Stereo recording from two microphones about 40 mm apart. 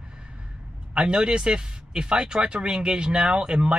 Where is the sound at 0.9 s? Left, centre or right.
Right.